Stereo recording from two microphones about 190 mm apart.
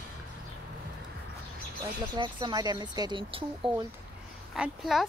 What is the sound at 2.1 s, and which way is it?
Speech, 25° right (ahead or behind).